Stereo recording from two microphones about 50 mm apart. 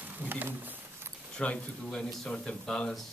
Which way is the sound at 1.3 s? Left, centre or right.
Centre.